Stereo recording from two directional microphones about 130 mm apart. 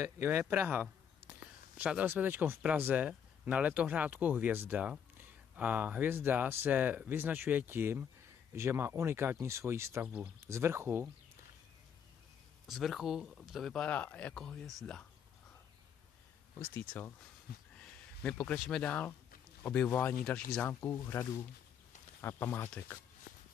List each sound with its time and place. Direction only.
0.0 s speech: 15° right (ahead or behind)
10.0 s speech: 10° right (ahead or behind)
12.6 s speech: centre (ahead or behind)
16.5 s speech: 15° left (ahead or behind)
20.8 s speech: 20° left (ahead or behind)